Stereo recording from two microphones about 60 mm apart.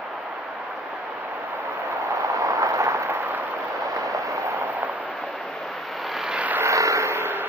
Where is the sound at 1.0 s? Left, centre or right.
Right.